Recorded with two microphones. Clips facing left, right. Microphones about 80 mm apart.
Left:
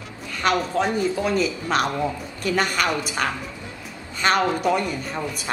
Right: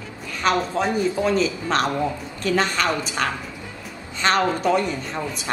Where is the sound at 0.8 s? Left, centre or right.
Centre.